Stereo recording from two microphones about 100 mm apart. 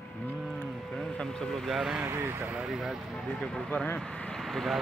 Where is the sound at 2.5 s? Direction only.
5° right (ahead or behind).